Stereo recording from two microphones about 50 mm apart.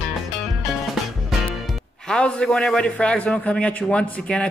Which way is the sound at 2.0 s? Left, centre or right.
Centre.